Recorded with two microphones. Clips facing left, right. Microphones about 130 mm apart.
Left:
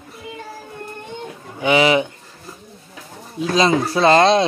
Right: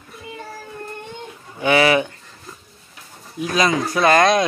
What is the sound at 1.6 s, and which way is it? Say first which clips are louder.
Speech: left 1 dB; 20° left (ahead or behind).